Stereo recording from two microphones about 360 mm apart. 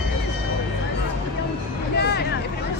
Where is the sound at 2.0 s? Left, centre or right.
Left.